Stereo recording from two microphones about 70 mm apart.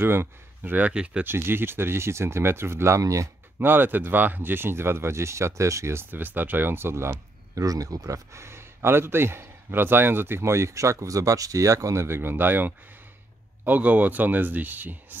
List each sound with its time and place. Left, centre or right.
0.0 s speech: right
0.7 s speech: centre
1.2 s speech: right
3.0 s speech: right
3.5 s speech: right
6.1 s speech: right
7.6 s speech: right